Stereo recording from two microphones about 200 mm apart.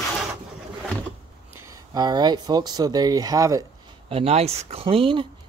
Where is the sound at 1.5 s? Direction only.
15° right (ahead or behind).